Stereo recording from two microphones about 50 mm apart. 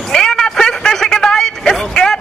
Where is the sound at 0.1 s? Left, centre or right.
Centre.